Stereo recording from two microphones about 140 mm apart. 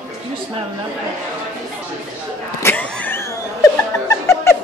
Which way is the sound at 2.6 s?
10° left (ahead or behind).